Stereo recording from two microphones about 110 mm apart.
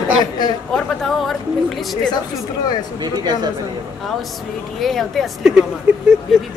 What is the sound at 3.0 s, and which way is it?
Speech, 40° right (ahead or behind).